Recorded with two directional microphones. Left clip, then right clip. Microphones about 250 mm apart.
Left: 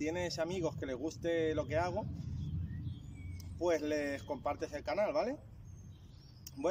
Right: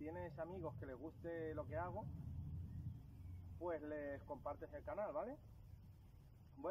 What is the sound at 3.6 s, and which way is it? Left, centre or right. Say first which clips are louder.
Speech: left 13 dB; centre.